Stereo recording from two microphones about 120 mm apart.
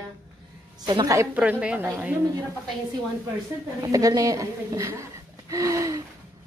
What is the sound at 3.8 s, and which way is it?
A woman's voice, 30° right (ahead or behind).